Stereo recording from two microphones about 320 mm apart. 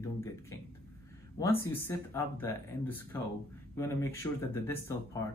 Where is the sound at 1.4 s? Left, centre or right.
Centre.